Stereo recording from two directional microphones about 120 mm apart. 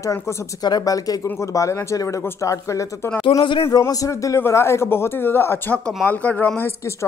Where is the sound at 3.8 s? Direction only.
25° left (ahead or behind).